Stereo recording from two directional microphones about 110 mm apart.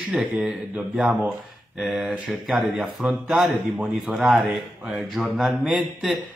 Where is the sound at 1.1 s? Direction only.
20° right (ahead or behind).